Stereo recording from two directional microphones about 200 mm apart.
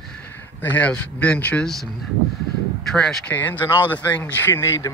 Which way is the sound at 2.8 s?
Centre (ahead or behind).